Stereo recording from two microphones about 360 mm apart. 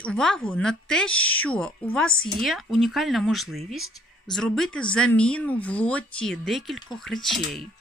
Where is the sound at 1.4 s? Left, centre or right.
Centre.